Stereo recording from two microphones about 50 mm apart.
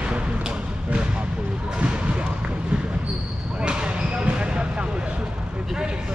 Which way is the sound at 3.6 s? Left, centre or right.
Centre.